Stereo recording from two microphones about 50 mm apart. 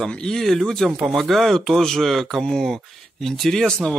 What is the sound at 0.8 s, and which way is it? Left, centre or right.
Speech, centre.